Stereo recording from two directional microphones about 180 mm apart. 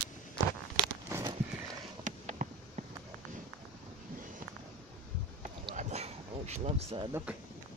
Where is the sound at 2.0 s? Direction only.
45° right (ahead or behind).